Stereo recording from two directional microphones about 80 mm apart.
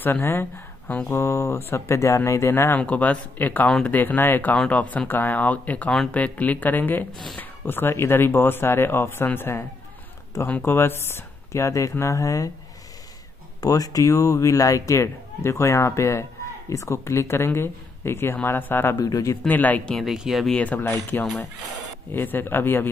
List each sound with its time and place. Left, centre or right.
0.0 s speech: left
0.8 s speech: centre
1.1 s speech: left
2.8 s speech: centre; by 12.4 s left
13.6 s speech: left
18.9 s speech: left
19.4 s speech: left
20.1 s speech: centre
20.5 s speech: centre
21.1 s speech: left